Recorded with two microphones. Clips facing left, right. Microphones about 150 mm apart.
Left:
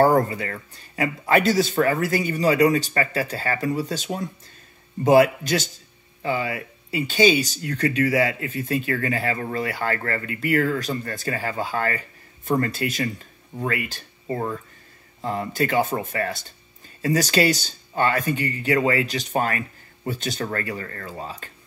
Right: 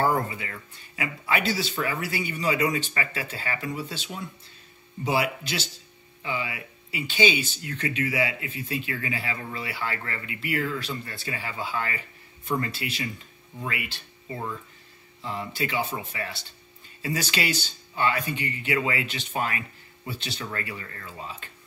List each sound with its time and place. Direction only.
0.0 s speech: 40° left (ahead or behind)